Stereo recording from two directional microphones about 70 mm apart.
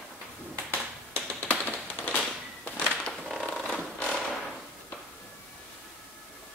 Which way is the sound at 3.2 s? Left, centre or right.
Centre.